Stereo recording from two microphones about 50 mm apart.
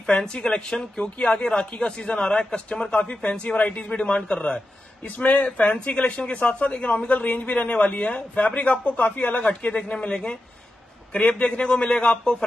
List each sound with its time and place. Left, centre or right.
0.2 s a man's voice: centre
5.0 s a man's voice: left; by 12.4 s centre